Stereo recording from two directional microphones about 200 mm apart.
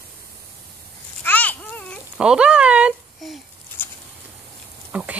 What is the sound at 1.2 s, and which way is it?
Babbling, 10° left (ahead or behind).